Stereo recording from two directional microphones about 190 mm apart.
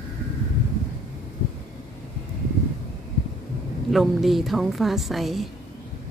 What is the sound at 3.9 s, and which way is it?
A woman's voice, centre (ahead or behind).